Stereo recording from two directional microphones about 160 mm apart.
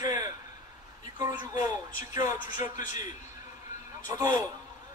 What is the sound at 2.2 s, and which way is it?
Speech, 55° left (ahead or behind).